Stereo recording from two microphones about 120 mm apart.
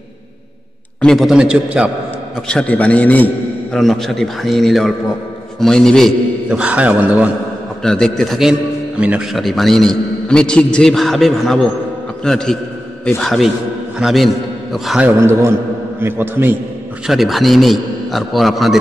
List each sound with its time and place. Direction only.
1.0 s a man's voice: centre (ahead or behind)
2.4 s a man's voice: 10° left (ahead or behind)
6.5 s a man's voice: 10° right (ahead or behind)
7.8 s a man's voice: 5° left (ahead or behind)
9.4 s a man's voice: centre (ahead or behind)
15.1 s a man's voice: 20° right (ahead or behind)
17.0 s a man's voice: centre (ahead or behind)